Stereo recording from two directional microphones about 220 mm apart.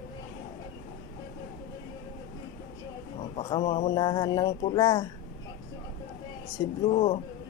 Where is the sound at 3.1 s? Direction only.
25° left (ahead or behind).